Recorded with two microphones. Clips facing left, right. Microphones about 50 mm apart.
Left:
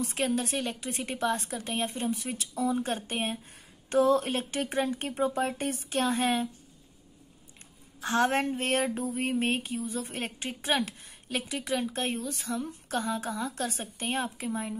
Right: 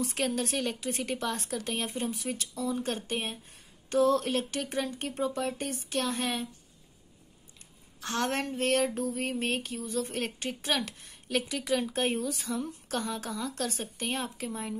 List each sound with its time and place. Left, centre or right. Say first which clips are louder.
0.0 s a woman's voice: left 1 dB; centre
2.5 s speech: left 4 dB; centre
8.0 s a woman's voice: left 5 dB; centre